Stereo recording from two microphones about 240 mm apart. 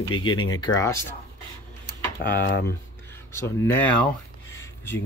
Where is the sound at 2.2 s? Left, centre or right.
Left.